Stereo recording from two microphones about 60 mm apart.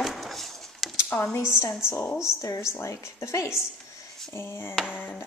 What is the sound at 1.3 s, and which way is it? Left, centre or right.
A woman's voice, left.